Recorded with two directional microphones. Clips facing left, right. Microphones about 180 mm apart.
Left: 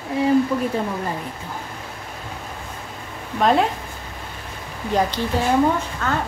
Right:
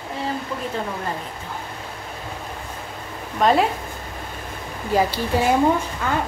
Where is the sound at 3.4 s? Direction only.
Centre (ahead or behind).